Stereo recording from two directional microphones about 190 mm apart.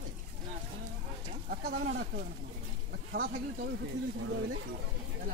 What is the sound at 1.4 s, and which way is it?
Speech, 60° right (ahead or behind).